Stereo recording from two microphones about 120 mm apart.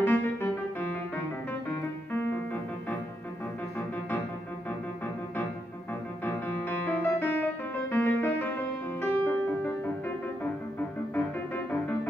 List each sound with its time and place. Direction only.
0.0 s music: 15° left (ahead or behind)
6.2 s music: 15° left (ahead or behind)